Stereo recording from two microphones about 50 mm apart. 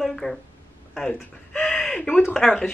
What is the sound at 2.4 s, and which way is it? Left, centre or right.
Speech, centre.